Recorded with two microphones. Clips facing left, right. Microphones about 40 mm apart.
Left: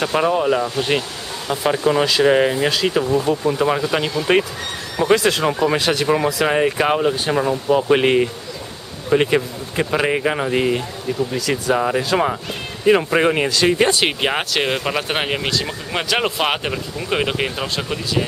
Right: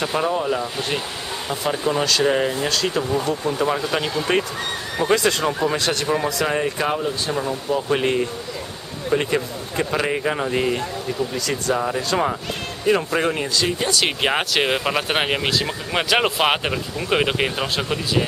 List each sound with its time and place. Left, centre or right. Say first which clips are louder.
0.0 s speech: left 4 dB; centre
2.7 s speech: left 4 dB; centre
5.0 s speech: left 3 dB; centre
6.4 s speech: left 4 dB; left
9.1 s speech: left 5 dB; centre
10.8 s speech: left 2 dB; centre
11.7 s speech: left 4 dB; left
12.0 s speech: left 3 dB; centre
12.8 s speech: left 5 dB; left
13.4 s speech: left 6 dB; left
14.2 s speech: even; centre